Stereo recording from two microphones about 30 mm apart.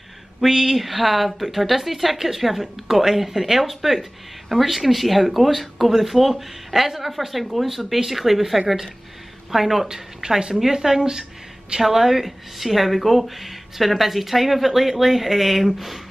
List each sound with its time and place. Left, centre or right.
0.4 s speech: centre